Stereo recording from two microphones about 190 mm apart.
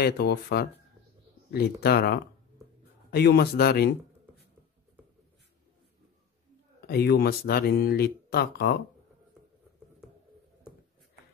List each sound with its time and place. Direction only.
0.0 s speech: 60° left (ahead or behind)
6.9 s speech: 55° left (ahead or behind)